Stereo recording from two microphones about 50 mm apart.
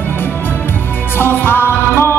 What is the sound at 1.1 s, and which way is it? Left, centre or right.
Music, left.